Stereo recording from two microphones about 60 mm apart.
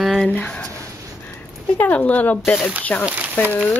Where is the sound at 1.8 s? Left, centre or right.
Left.